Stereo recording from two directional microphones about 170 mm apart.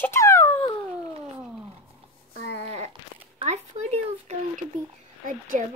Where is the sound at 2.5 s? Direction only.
40° right (ahead or behind).